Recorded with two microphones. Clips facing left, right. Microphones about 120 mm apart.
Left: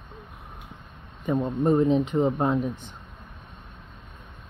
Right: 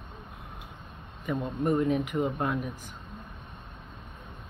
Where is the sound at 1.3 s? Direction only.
25° left (ahead or behind).